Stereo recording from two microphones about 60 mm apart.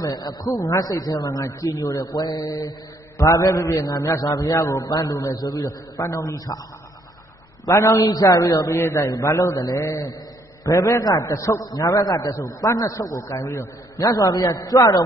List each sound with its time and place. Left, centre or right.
0.0 s a man's voice: left
3.2 s a man's voice: left
4.6 s a man's voice: left
7.7 s a man's voice: left
8.0 s a man's voice: left
8.6 s a man's voice: left